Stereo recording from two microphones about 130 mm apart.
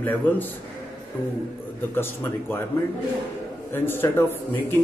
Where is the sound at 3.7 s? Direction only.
15° left (ahead or behind).